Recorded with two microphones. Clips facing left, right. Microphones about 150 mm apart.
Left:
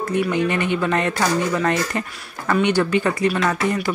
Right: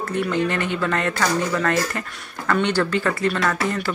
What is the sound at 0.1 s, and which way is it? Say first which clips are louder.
Speech: left 2 dB; 15° left (ahead or behind).